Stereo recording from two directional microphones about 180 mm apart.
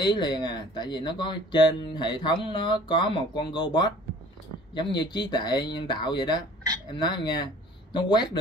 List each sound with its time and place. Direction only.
0.0 s speech: 25° left (ahead or behind)